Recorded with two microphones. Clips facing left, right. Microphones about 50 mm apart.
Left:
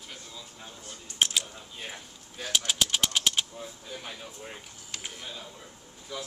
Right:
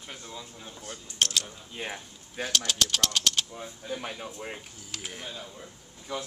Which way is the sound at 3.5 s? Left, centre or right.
Right.